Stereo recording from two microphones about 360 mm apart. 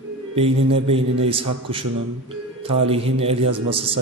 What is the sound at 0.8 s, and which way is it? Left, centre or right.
A man's voice, centre.